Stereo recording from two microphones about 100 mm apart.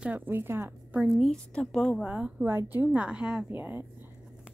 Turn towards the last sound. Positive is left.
turn(degrees=-20)  # may be behind; listen again after turning